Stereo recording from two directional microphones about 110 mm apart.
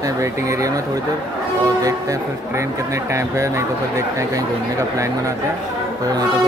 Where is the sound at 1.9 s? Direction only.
30° right (ahead or behind).